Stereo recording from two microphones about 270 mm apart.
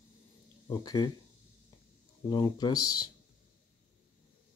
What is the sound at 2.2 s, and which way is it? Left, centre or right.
Speech, centre.